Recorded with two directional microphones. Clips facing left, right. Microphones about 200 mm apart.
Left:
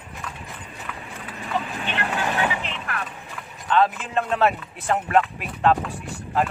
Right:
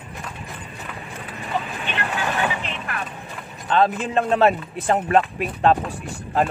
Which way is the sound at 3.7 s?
30° right (ahead or behind).